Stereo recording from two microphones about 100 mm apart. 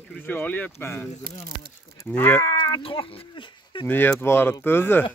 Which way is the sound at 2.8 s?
65° left (ahead or behind).